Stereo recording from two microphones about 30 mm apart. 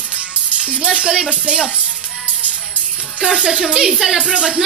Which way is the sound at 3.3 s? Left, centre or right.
Centre.